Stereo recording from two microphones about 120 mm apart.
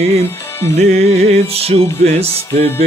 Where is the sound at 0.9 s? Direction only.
60° right (ahead or behind).